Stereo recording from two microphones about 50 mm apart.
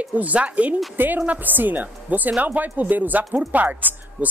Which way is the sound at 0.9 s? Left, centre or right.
Right.